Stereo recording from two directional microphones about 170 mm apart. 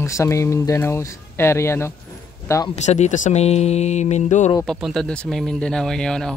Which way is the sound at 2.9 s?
45° left (ahead or behind).